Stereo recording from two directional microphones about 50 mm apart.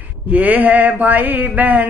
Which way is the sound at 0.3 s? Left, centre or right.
Right.